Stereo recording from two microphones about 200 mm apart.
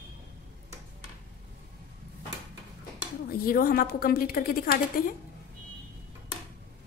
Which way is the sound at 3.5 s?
45° left (ahead or behind).